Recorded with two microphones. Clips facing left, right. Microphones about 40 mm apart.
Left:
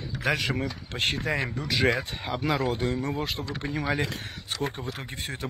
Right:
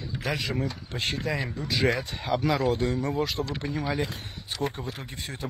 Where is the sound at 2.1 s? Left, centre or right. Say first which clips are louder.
Right 3 dB; centre.